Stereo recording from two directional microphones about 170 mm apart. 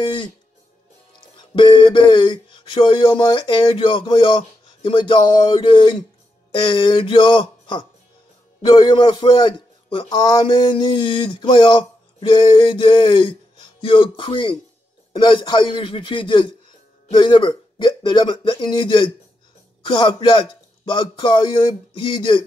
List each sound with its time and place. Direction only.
1.3 s a man's voice: 30° left (ahead or behind)